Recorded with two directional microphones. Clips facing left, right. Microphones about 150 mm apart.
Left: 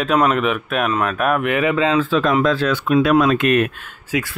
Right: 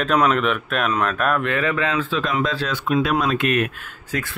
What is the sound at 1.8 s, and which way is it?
Speech, 40° left (ahead or behind).